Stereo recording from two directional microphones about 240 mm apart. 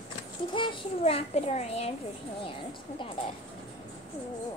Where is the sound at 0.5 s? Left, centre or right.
Left.